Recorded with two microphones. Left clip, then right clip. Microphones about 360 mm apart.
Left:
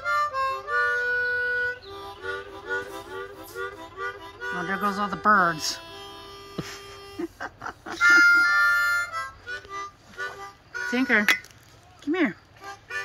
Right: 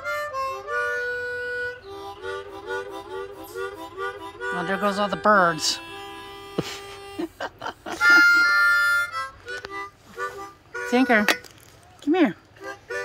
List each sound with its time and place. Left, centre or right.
0.0 s harmonica: right
12.0 s music: centre